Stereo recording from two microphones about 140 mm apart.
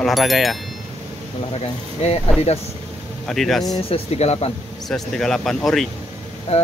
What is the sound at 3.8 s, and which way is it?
Speech, 45° left (ahead or behind).